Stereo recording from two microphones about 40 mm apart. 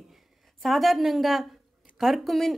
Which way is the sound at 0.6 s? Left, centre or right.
Centre.